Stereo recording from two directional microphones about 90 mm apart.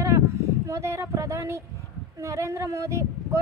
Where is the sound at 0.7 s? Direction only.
35° right (ahead or behind).